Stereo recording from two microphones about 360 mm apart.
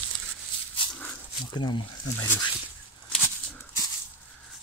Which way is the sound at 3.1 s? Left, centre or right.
Centre.